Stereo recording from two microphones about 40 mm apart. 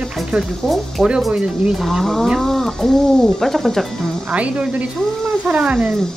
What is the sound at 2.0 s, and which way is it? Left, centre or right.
Speech, centre.